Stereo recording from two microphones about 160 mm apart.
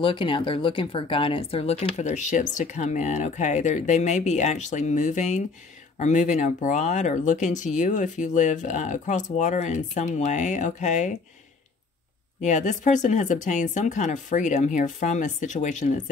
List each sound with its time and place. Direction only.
0.0 s speech: 30° left (ahead or behind); by 11.1 s 50° left (ahead or behind)
12.4 s speech: 50° left (ahead or behind)